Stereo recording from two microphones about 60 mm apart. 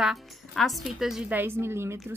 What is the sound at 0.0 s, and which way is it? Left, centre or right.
Speech, centre.